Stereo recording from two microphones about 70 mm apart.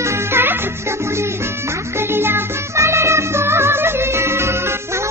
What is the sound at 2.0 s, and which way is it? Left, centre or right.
Music, right.